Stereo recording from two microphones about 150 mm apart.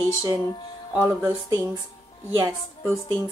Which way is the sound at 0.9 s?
15° right (ahead or behind).